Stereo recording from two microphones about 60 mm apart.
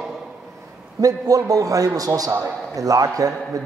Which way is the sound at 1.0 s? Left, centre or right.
Right.